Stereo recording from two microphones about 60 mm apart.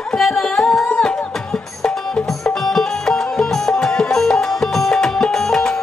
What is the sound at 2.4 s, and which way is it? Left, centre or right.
Music, centre.